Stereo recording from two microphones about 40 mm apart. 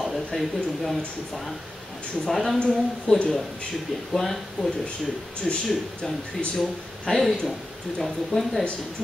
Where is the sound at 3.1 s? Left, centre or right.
Left.